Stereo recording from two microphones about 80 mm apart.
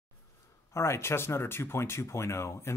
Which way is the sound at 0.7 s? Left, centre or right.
Left.